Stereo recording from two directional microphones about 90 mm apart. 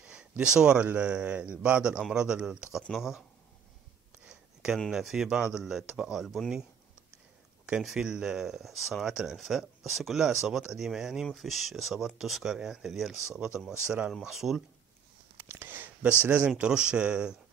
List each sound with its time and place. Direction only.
0.0 s speech: 10° right (ahead or behind)
4.3 s speech: 5° right (ahead or behind)
7.6 s speech: 10° right (ahead or behind)
15.3 s a sound: 25° right (ahead or behind)
16.3 s speech: 15° right (ahead or behind)